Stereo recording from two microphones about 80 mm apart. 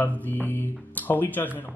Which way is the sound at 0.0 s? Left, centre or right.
Left.